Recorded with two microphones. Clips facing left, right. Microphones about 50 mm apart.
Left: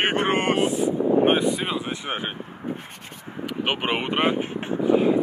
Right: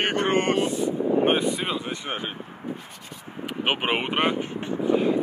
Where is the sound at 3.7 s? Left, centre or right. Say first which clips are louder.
Right 1 dB; centre.